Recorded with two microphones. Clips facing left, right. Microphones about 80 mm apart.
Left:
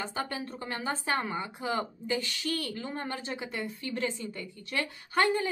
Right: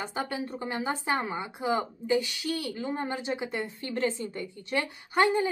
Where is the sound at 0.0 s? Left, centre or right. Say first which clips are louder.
Right 2 dB; centre.